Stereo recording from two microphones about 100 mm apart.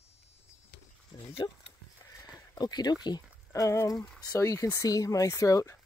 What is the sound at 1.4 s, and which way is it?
Speech, 40° left (ahead or behind).